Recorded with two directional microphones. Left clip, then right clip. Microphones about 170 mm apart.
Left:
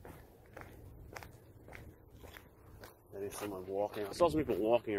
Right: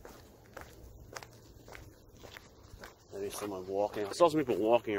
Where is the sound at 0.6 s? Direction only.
15° left (ahead or behind).